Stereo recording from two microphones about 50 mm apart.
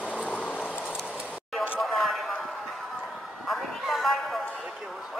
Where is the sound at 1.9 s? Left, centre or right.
Centre.